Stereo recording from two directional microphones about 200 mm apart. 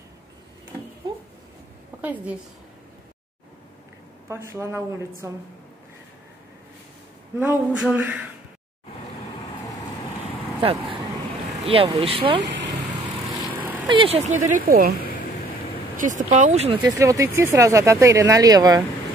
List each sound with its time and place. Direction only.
2.0 s a woman's voice: 10° right (ahead or behind)
4.3 s speech: 15° right (ahead or behind)
7.3 s speech: 10° right (ahead or behind)
10.6 s speech: 25° right (ahead or behind)
12.4 s vehicle: 65° right (ahead or behind)
13.8 s speech: 25° right (ahead or behind)
14.5 s speech: 50° right (ahead or behind)
16.0 s speech: 40° right (ahead or behind)
17.0 s speech: 15° right (ahead or behind)